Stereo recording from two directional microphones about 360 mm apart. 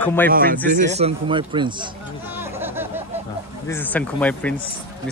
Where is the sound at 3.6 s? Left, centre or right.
Centre.